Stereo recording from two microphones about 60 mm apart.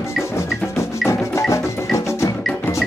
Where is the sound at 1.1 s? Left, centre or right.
Left.